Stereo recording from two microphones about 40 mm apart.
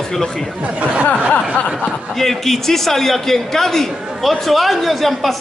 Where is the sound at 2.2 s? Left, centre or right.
Centre.